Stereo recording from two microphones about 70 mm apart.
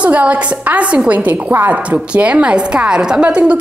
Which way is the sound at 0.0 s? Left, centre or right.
Centre.